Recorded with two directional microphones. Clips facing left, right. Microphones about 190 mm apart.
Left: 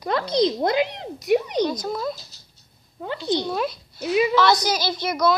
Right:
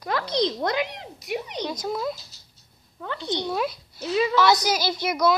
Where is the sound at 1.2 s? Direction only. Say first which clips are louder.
Left 10 dB; 40° left (ahead or behind).